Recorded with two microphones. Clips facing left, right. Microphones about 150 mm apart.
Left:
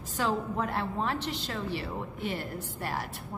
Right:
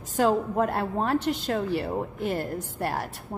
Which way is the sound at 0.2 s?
50° right (ahead or behind).